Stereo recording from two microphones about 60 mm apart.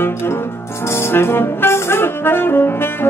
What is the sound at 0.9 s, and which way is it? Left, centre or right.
Saxophone, left.